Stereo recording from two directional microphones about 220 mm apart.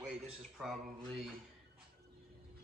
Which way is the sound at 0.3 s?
Centre (ahead or behind).